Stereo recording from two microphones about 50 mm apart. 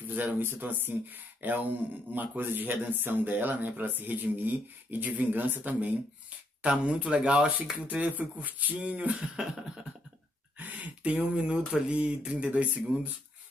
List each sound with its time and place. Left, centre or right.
0.0 s speech: right
6.6 s speech: right
8.7 s speech: right
10.6 s speech: right